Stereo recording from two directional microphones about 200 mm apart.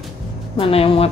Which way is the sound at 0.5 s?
30° left (ahead or behind).